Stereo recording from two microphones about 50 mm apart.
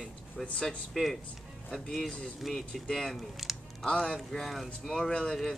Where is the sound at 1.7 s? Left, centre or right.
Centre.